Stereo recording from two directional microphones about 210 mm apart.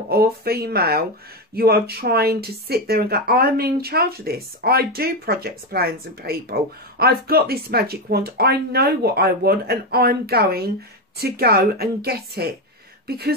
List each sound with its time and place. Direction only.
0.1 s speech: 50° right (ahead or behind)